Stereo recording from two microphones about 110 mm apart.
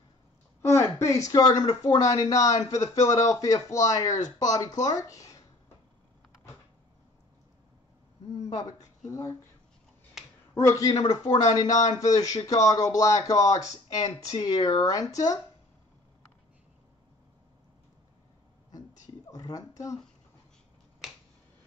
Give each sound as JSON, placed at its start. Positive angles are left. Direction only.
{"t": 0.6, "sound": "speech", "side_deg": 25}
{"t": 8.5, "sound": "speech", "side_deg": 35}
{"t": 10.2, "sound": "finger snapping", "side_deg": 0}
{"t": 10.5, "sound": "speech", "side_deg": 25}
{"t": 19.3, "sound": "speech", "side_deg": 35}